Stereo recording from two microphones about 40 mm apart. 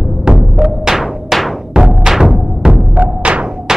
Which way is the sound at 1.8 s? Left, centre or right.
Centre.